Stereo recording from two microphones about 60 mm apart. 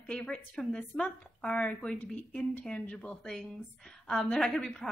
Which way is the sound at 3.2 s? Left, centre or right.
Centre.